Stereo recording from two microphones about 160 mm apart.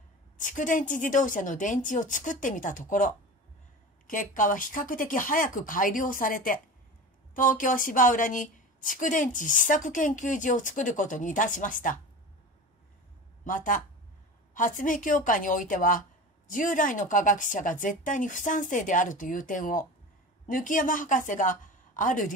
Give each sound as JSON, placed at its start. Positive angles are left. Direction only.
{"t": 0.4, "sound": "a woman's voice", "side_deg": 55}
{"t": 13.4, "sound": "a woman's voice", "side_deg": 55}